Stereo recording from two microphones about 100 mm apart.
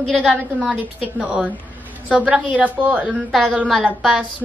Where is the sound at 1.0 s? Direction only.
15° right (ahead or behind).